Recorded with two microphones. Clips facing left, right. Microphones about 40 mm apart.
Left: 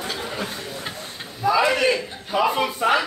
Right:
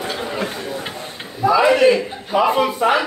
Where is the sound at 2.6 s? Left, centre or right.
Centre.